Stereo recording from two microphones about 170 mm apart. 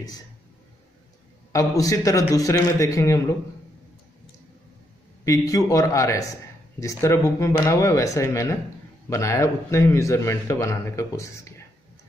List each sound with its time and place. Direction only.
1.5 s a man's voice: 20° left (ahead or behind)
5.2 s a man's voice: 20° left (ahead or behind)